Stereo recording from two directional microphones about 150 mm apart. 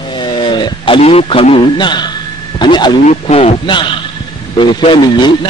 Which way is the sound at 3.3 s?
40° left (ahead or behind).